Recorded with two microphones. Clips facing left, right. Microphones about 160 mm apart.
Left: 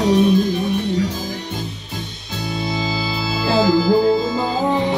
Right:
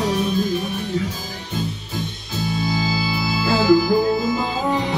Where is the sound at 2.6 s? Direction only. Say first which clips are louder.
Left 2 dB; 25° left (ahead or behind).